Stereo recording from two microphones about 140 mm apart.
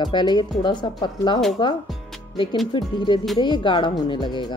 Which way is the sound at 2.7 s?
35° left (ahead or behind).